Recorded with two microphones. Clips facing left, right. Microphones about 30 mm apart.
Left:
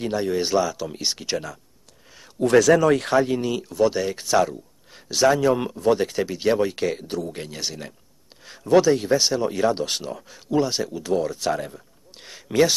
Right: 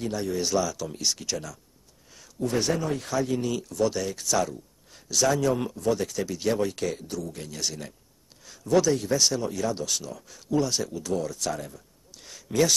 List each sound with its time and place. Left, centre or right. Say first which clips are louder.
0.0 s a man's voice: left 5 dB; left
2.4 s speech: left 11 dB; left
3.3 s a man's voice: left 4 dB; left
9.5 s a man's voice: left 6 dB; left
10.2 s speech: left 4 dB; left